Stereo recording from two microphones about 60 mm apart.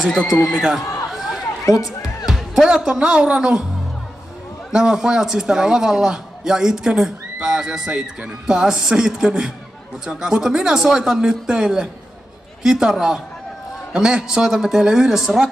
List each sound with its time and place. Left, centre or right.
0.1 s speech: centre
1.7 s speech: left
2.5 s a man's voice: centre
4.7 s a man's voice: centre